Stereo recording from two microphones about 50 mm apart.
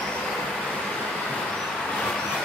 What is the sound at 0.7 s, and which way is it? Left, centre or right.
Vehicle, left.